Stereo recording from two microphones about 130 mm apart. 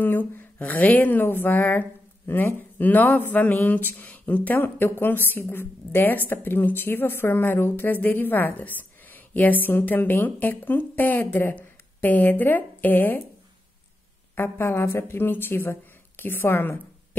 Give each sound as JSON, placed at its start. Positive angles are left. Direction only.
{"t": 0.0, "sound": "a woman's voice", "side_deg": 15}
{"t": 14.3, "sound": "speech", "side_deg": 20}